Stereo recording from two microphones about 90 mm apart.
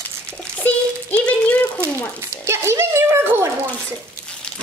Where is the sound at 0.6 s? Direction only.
15° left (ahead or behind).